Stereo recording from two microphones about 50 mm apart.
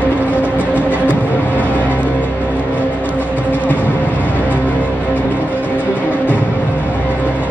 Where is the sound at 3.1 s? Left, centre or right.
Right.